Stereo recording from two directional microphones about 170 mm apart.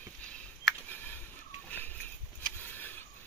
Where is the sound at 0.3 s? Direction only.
10° left (ahead or behind).